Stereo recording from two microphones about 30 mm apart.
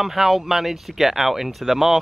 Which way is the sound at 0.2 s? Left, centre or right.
Centre.